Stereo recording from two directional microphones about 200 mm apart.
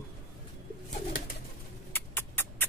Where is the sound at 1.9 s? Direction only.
10° left (ahead or behind).